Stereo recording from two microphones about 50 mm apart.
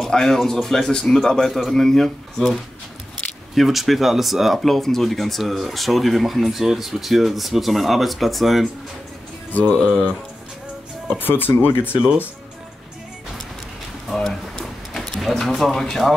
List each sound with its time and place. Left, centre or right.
0.0 s a man's voice: centre
3.5 s speech: centre
9.5 s speech: left
9.8 s speech: centre
11.1 s speech: left
11.9 s speech: right
14.1 s a sound: centre
15.3 s speech: centre